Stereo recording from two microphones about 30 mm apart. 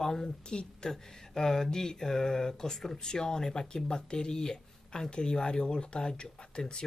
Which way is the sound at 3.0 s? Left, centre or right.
Left.